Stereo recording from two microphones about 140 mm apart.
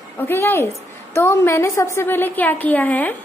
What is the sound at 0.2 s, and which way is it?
A woman's voice, 15° left (ahead or behind).